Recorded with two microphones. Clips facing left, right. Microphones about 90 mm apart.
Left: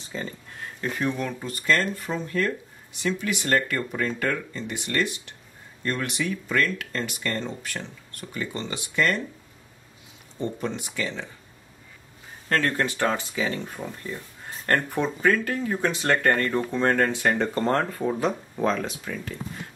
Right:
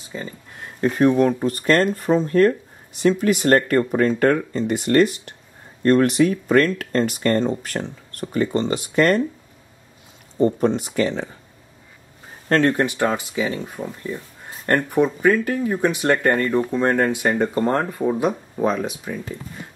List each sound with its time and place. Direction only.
0.7 s speech: 40° right (ahead or behind)
10.4 s speech: 40° right (ahead or behind)
12.5 s speech: 20° right (ahead or behind)